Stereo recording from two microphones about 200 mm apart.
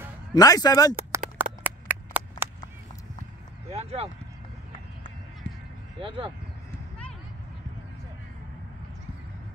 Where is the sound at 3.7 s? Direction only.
30° right (ahead or behind).